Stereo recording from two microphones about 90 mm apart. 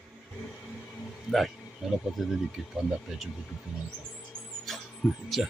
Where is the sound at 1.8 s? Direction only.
Centre (ahead or behind).